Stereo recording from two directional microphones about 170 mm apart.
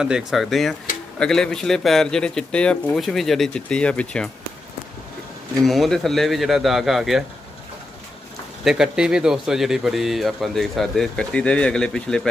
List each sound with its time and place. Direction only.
0.0 s speech: 5° right (ahead or behind)
5.6 s speech: centre (ahead or behind)
8.6 s speech: 5° right (ahead or behind)